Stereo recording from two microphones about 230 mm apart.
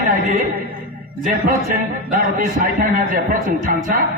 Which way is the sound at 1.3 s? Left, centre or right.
Right.